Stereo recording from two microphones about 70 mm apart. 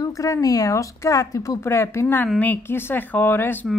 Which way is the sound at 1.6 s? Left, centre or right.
Left.